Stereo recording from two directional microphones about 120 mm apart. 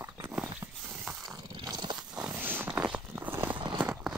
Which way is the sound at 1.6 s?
35° right (ahead or behind).